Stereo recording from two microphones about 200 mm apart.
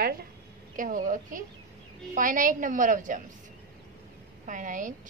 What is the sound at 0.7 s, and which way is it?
A woman's voice, 40° right (ahead or behind).